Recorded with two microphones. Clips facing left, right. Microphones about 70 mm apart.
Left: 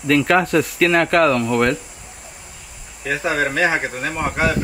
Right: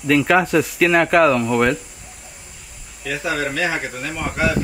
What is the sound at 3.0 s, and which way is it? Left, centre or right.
Speech, left.